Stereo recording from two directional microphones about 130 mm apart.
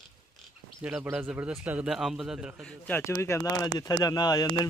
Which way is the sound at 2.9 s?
20° left (ahead or behind).